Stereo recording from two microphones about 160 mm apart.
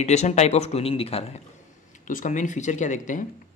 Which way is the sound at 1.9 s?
55° left (ahead or behind).